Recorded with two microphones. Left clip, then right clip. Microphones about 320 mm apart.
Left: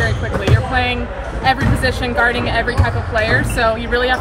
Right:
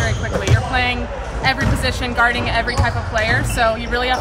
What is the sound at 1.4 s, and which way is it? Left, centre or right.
Speech, centre.